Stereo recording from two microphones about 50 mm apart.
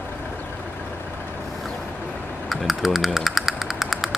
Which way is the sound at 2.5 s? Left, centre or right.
Centre.